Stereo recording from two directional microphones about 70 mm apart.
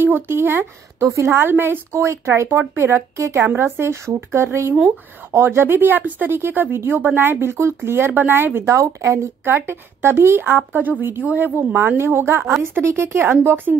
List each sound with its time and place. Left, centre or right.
0.0 s speech: right
9.4 s speech: right